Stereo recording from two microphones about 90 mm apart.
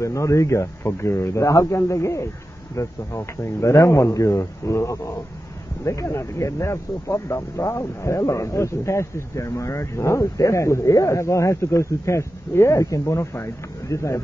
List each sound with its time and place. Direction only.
0.0 s speech: 35° left (ahead or behind)